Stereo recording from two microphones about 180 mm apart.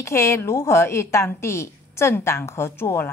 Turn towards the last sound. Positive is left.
turn(degrees=15)  # may be behind; listen again after turning